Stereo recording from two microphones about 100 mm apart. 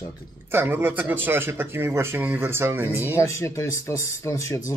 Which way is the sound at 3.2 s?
30° left (ahead or behind).